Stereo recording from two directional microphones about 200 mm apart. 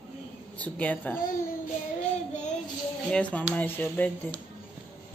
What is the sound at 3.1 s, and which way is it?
A woman's voice, 5° left (ahead or behind).